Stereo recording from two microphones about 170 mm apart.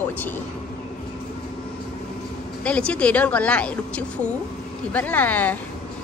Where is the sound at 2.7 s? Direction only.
5° left (ahead or behind).